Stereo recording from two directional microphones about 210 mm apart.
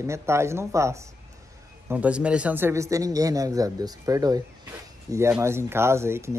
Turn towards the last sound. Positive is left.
turn(degrees=-10)  # may be behind; listen again after turning